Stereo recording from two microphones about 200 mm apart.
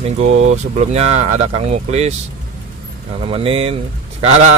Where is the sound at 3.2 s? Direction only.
30° right (ahead or behind).